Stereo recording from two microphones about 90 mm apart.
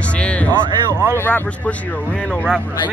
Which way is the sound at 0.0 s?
15° left (ahead or behind).